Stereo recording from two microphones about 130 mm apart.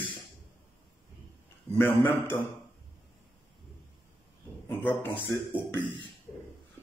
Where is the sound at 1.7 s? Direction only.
15° left (ahead or behind).